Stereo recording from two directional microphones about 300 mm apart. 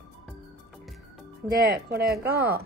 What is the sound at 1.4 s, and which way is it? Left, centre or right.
Speech, right.